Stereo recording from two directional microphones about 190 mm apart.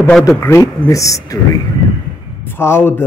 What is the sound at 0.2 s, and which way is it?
Speech, 15° left (ahead or behind).